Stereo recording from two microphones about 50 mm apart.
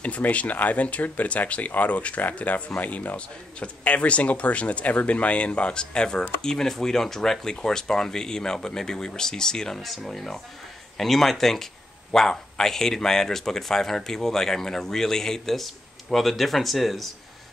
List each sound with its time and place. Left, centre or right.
0.0 s speech: left; by 17.1 s centre